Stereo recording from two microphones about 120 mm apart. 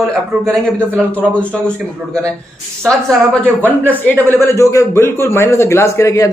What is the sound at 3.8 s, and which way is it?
A man's voice, 15° left (ahead or behind).